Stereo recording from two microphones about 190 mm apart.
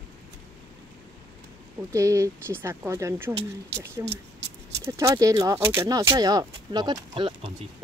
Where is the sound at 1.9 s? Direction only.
15° right (ahead or behind).